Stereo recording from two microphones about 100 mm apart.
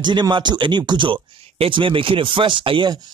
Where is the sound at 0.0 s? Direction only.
50° right (ahead or behind).